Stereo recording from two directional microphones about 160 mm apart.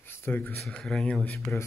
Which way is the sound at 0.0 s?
15° left (ahead or behind).